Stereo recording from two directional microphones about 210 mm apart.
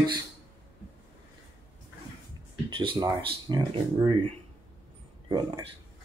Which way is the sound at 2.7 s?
25° right (ahead or behind).